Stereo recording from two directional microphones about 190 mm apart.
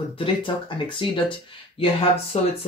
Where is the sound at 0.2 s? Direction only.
25° left (ahead or behind).